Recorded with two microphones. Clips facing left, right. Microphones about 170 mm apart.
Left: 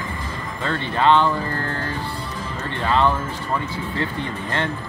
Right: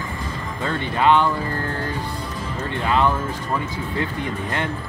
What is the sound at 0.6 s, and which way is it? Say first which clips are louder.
Speech: even; 10° right (ahead or behind).